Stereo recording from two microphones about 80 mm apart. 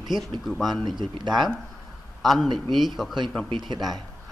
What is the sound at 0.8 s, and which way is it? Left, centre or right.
Speech, right.